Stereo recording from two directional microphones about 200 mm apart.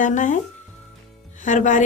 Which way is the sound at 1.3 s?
40° left (ahead or behind).